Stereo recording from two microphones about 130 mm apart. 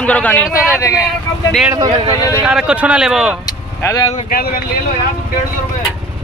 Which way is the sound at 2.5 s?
5° right (ahead or behind).